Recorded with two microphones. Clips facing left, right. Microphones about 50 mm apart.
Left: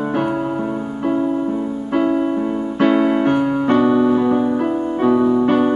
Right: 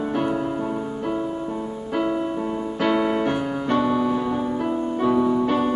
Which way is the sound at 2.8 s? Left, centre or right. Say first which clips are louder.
Left 6 dB; centre.